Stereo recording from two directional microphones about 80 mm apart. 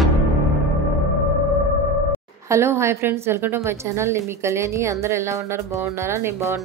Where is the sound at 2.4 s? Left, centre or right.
Right.